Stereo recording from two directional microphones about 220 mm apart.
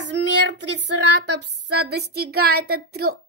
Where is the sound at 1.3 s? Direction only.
90° right.